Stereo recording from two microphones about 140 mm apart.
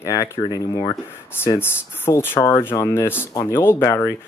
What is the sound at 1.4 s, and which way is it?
Speech, 15° left (ahead or behind).